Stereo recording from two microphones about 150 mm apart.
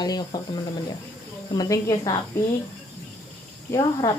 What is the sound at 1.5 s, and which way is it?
Speech, 20° left (ahead or behind).